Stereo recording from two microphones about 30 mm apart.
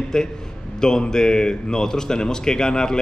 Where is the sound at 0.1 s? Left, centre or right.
Centre.